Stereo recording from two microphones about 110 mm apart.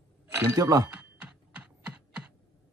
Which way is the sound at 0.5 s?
30° right (ahead or behind).